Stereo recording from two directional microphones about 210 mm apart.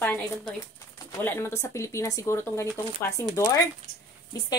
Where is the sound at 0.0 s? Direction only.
5° left (ahead or behind).